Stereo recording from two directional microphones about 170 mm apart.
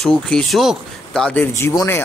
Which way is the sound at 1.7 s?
25° left (ahead or behind).